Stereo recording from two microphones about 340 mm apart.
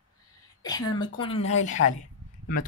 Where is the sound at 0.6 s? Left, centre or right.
Centre.